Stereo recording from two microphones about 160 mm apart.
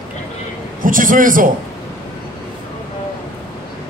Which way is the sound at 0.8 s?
60° right (ahead or behind).